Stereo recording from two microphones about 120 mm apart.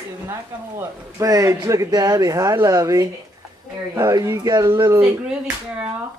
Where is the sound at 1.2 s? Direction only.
25° right (ahead or behind).